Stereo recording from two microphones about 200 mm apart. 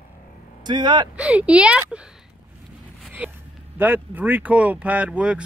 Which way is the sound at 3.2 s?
5° right (ahead or behind).